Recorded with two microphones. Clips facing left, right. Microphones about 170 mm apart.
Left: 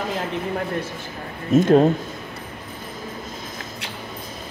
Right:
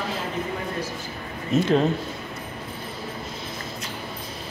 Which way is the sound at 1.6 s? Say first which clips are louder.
Left 6 dB; 45° left (ahead or behind).